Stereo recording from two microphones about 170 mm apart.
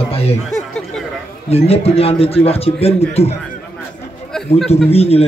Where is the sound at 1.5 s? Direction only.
35° left (ahead or behind).